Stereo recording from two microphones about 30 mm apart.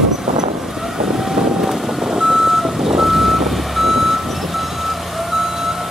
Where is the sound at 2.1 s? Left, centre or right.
Right.